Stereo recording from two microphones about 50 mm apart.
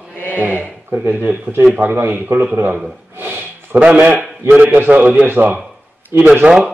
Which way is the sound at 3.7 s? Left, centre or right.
Right.